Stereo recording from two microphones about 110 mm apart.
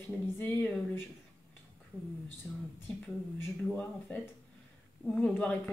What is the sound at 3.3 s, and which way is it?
Speech, 15° left (ahead or behind).